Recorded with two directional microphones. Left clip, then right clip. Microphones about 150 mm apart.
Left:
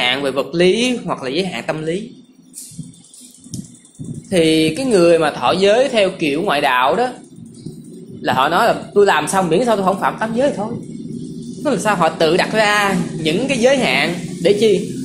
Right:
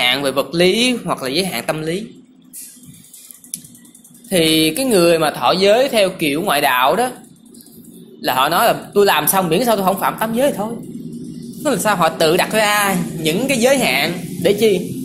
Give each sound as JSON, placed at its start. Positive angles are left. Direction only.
{"t": 0.0, "sound": "a woman's voice", "side_deg": -50}
{"t": 4.3, "sound": "a woman's voice", "side_deg": -50}
{"t": 8.3, "sound": "a woman's voice", "side_deg": -50}